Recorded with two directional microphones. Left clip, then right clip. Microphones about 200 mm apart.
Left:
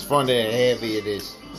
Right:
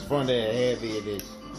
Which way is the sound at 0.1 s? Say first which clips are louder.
Left 5 dB; 20° left (ahead or behind).